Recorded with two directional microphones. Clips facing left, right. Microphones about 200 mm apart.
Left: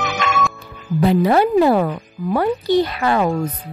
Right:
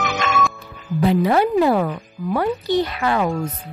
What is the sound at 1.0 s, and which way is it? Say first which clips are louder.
A woman's voice: left 2 dB; 40° left (ahead or behind).